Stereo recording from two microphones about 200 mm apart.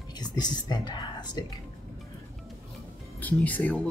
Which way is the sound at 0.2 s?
20° left (ahead or behind).